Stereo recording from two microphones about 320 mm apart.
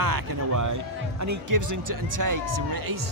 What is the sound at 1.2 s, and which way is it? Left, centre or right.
Speech, right.